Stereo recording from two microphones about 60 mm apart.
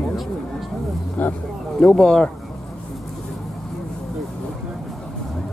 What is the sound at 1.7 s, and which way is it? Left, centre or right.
Speech, centre.